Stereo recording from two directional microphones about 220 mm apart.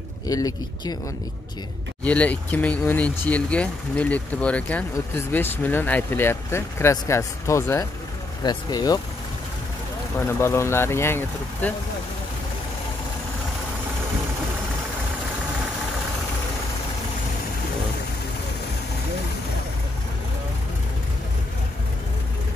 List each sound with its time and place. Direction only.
0.3 s speech: 20° left (ahead or behind)
2.0 s speech: 5° left (ahead or behind)
10.1 s speech: 10° left (ahead or behind)